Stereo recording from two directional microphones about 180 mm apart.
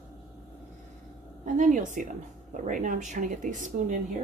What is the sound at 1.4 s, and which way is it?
Speech, 45° right (ahead or behind).